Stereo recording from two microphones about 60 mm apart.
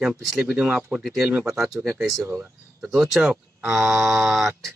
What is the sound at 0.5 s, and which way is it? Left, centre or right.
Speech, right.